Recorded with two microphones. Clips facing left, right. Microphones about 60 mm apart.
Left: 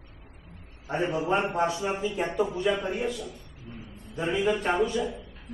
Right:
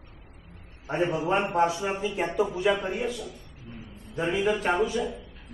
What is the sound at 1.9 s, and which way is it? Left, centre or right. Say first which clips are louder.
A man's voice: even; centre.